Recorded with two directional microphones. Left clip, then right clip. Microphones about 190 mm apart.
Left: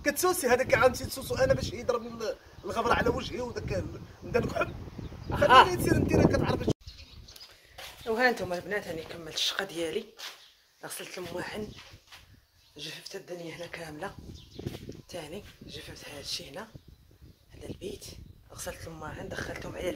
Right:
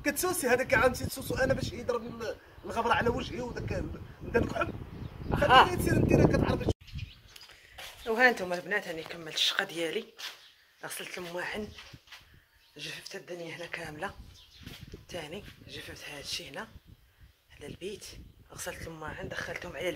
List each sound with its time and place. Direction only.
0.0 s speech: 15° left (ahead or behind)
7.7 s speech: 5° right (ahead or behind)
12.7 s speech: 10° right (ahead or behind)